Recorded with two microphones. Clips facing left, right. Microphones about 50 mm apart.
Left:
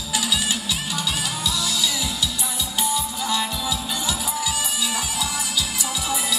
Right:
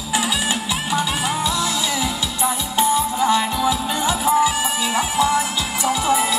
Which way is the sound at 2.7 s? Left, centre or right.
Right.